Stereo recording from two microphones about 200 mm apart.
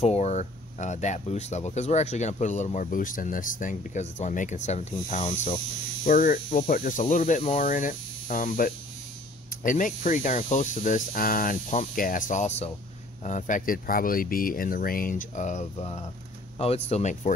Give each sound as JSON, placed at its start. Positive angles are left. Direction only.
{"t": 0.0, "sound": "speech", "side_deg": 35}